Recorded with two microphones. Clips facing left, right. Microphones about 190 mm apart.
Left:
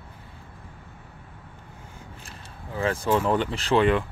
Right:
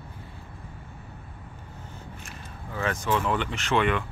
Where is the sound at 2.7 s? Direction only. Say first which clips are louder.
Left 3 dB; 30° left (ahead or behind).